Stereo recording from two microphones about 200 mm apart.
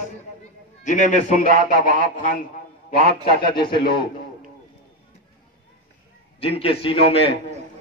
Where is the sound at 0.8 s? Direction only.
40° left (ahead or behind).